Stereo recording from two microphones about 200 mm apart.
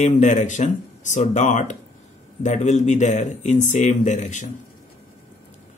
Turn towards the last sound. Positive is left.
turn(degrees=35)  # may be behind; listen again after turning